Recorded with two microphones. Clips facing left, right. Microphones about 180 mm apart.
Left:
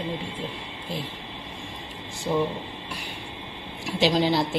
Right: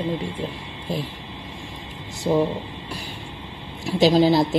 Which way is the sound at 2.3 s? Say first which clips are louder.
Right 5 dB; 30° right (ahead or behind).